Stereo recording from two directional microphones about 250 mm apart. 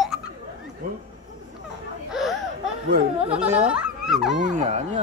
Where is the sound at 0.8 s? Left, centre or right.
Right.